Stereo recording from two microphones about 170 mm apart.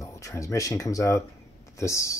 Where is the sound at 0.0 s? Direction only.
20° left (ahead or behind).